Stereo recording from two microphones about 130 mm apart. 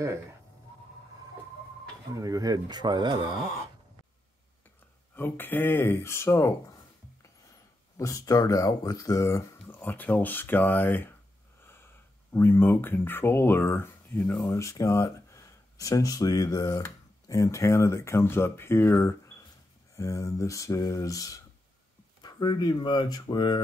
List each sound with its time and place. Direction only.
2.1 s speech: 25° right (ahead or behind)
5.1 s speech: 15° left (ahead or behind)
8.0 s speech: 25° left (ahead or behind)
12.3 s speech: 15° left (ahead or behind); by 23.6 s 35° left (ahead or behind)